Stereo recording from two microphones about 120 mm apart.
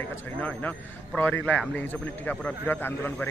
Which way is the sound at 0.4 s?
15° left (ahead or behind).